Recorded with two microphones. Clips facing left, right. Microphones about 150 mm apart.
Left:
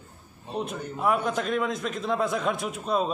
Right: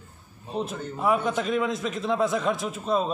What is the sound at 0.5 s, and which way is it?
A man's voice, centre (ahead or behind).